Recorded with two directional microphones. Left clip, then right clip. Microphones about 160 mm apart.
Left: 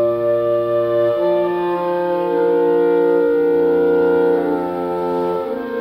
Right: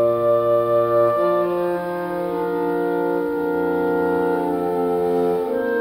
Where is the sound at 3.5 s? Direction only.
Centre (ahead or behind).